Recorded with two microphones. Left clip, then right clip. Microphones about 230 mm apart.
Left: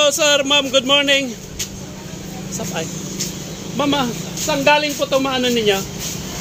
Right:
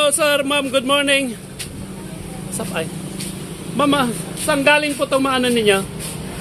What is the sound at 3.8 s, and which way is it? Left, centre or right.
Speech, centre.